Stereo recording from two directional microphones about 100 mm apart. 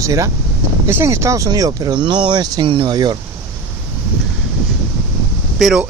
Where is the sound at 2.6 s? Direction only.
60° right (ahead or behind).